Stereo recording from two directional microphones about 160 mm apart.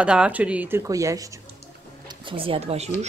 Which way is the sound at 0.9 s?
20° right (ahead or behind).